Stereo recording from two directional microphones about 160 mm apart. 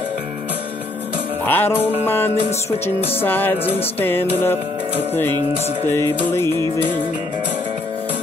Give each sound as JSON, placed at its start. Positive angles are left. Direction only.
{"t": 1.4, "sound": "music", "side_deg": 15}
{"t": 5.9, "sound": "music", "side_deg": 15}